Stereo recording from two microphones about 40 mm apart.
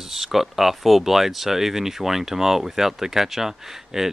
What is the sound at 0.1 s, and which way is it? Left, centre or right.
Speech, centre.